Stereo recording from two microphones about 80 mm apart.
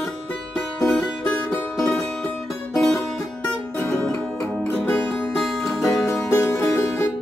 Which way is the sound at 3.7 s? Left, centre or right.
Left.